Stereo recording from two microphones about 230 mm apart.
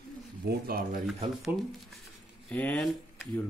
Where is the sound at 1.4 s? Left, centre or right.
Centre.